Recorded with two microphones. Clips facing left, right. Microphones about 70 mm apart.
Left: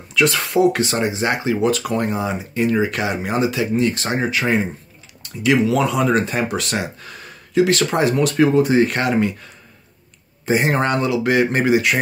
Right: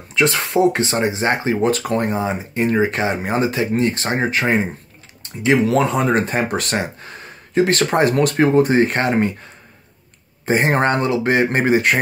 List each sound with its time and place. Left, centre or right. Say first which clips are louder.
0.1 s speech: even; right